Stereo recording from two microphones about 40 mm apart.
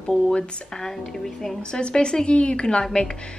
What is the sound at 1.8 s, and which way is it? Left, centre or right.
A woman's voice, left.